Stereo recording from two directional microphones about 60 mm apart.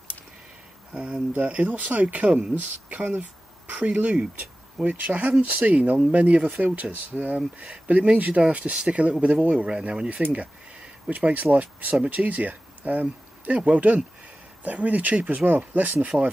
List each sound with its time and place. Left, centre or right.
0.9 s speech: centre
1.4 s speech: right